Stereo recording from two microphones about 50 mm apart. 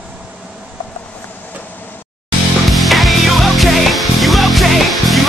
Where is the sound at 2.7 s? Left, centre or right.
Centre.